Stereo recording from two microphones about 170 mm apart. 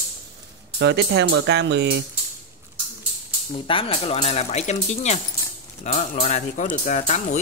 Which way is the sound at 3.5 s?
30° left (ahead or behind).